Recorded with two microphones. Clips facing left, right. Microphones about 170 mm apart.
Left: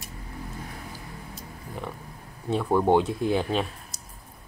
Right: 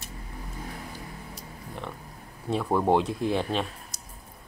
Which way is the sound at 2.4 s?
Centre (ahead or behind).